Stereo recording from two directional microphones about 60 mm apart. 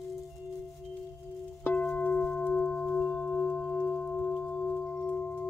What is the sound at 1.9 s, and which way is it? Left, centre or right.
Singing bowl, left.